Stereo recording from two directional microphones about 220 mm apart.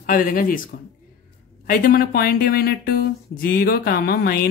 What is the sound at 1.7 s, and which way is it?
Speech, 40° left (ahead or behind).